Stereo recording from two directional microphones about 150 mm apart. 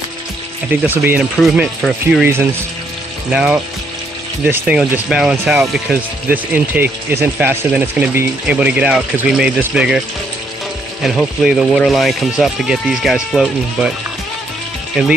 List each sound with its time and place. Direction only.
0.7 s speech: 15° right (ahead or behind)
1.4 s speech: centre (ahead or behind)
3.3 s speech: 5° right (ahead or behind)
11.0 s speech: 5° right (ahead or behind)
15.0 s speech: 5° right (ahead or behind)